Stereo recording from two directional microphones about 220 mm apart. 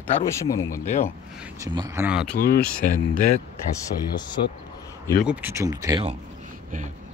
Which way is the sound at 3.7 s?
20° left (ahead or behind).